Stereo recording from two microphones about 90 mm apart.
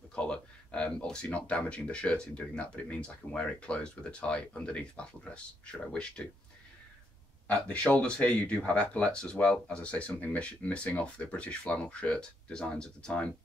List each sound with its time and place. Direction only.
0.1 s speech: 10° left (ahead or behind)
7.4 s speech: 15° left (ahead or behind)